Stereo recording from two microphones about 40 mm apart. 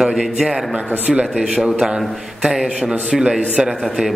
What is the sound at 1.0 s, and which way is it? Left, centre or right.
Speech, right.